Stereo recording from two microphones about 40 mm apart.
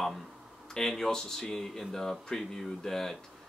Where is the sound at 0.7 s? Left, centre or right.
Centre.